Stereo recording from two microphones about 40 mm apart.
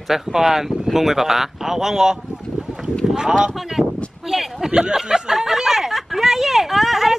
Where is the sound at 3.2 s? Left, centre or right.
Centre.